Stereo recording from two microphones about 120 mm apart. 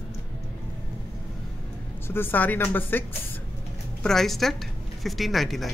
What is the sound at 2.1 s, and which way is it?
Speech, 15° left (ahead or behind).